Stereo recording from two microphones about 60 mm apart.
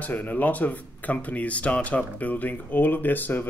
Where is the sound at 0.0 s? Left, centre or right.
Left.